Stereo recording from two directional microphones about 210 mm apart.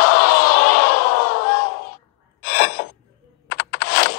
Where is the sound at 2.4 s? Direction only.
50° left (ahead or behind).